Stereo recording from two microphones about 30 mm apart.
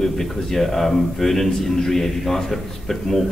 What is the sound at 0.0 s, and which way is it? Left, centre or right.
Speech, centre.